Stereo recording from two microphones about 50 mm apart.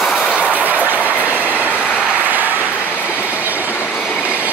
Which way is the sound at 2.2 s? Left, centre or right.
Right.